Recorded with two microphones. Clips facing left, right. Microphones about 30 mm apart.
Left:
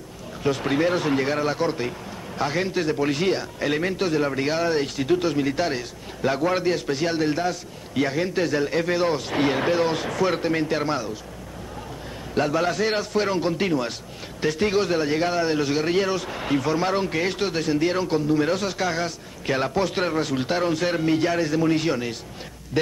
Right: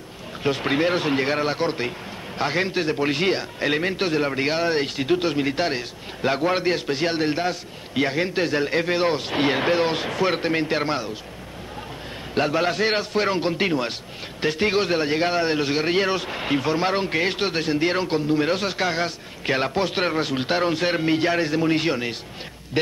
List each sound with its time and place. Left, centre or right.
0.4 s a man's voice: right
12.4 s a man's voice: right